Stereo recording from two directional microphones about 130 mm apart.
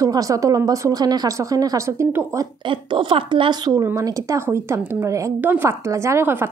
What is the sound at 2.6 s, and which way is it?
A woman's voice, 40° right (ahead or behind).